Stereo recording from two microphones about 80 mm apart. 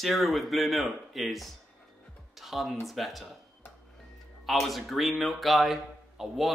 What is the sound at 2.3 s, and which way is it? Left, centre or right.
Music, centre.